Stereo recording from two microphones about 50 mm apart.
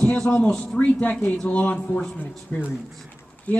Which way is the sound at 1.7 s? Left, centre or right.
Centre.